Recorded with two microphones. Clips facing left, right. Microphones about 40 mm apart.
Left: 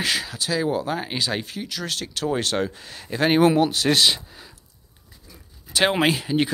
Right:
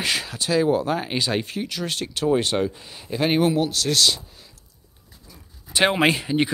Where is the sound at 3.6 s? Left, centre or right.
Centre.